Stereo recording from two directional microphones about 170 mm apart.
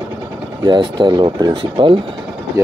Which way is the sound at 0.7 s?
25° right (ahead or behind).